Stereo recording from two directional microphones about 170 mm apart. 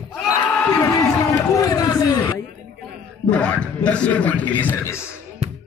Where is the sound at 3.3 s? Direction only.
5° left (ahead or behind).